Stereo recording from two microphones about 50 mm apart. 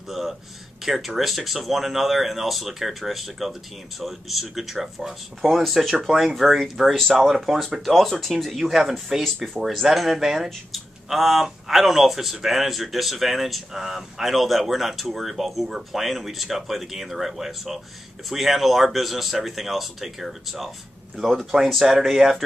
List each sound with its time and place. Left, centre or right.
0.1 s speech: centre